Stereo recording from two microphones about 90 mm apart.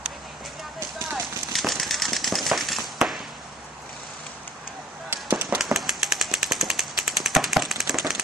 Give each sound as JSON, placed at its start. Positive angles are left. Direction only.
{"t": 1.1, "sound": "a sound", "side_deg": 0}
{"t": 5.1, "sound": "fireworks", "side_deg": -25}
{"t": 5.6, "sound": "machine gun", "side_deg": -5}